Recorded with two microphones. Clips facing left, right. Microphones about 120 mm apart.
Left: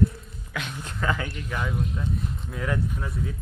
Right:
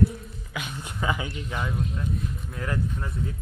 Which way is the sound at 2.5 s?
Centre (ahead or behind).